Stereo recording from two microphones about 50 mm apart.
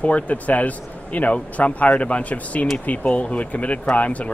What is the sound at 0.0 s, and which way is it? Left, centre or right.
Speech, left.